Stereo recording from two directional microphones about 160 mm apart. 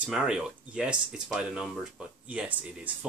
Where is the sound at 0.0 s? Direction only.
5° right (ahead or behind).